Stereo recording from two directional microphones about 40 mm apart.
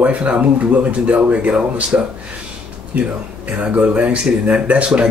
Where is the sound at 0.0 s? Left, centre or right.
Right.